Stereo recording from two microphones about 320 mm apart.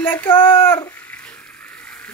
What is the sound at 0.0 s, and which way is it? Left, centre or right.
Speech, centre.